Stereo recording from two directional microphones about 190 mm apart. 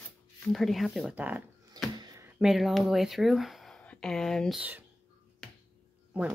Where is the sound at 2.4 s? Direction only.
Centre (ahead or behind).